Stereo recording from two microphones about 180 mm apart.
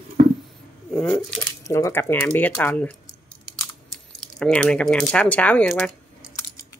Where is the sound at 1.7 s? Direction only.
15° left (ahead or behind).